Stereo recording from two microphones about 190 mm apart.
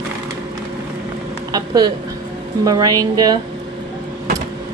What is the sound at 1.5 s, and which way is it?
A woman's voice, 20° right (ahead or behind).